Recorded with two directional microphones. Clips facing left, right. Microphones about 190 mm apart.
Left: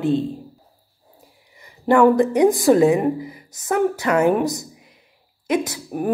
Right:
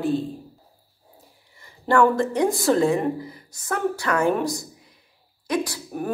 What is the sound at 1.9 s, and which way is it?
A woman's voice, 15° left (ahead or behind).